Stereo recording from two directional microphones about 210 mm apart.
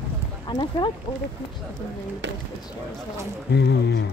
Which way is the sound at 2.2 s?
55° right (ahead or behind).